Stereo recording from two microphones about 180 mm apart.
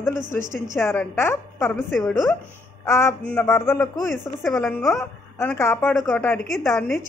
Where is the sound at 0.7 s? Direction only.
15° left (ahead or behind).